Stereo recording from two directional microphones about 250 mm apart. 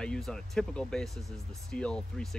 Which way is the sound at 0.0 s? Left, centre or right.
Centre.